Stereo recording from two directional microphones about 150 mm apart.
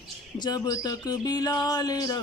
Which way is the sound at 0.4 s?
25° left (ahead or behind).